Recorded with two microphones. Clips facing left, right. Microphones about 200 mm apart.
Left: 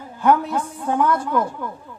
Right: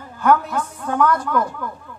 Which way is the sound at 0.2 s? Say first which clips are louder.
Even; 25° left (ahead or behind).